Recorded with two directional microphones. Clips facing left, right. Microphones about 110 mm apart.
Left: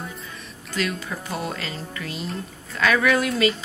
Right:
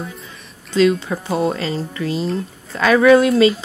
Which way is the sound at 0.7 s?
25° right (ahead or behind).